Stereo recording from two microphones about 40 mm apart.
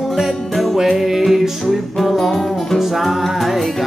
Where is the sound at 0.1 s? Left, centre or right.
Centre.